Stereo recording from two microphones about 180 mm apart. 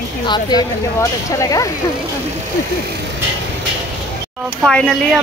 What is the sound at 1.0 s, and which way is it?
Speech, 15° left (ahead or behind).